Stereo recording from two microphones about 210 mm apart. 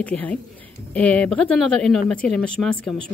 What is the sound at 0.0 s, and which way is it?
A woman's voice, 5° left (ahead or behind).